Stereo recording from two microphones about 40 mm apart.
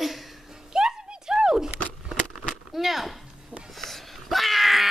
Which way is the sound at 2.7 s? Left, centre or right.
Centre.